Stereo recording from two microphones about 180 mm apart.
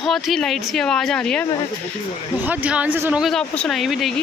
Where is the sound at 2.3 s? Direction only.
10° right (ahead or behind).